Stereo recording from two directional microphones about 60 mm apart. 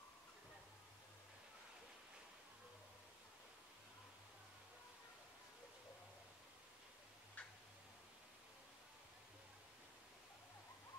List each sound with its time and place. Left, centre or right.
7.4 s tick-tock: left